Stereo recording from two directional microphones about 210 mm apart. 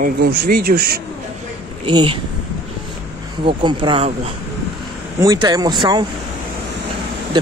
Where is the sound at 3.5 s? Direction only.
25° right (ahead or behind).